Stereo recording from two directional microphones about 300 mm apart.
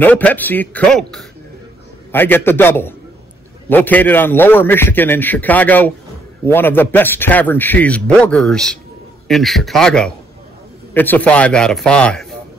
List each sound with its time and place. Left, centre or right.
0.0 s a man's voice: centre